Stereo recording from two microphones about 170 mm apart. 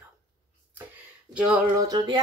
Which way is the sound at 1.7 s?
20° right (ahead or behind).